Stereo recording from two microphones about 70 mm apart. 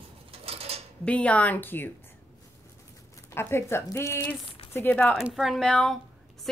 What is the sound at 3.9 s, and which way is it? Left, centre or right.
Speech, left.